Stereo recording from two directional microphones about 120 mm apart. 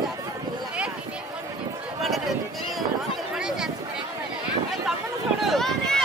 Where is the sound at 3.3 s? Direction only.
5° right (ahead or behind).